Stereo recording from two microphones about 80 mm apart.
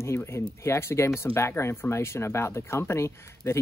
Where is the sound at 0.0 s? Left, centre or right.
Left.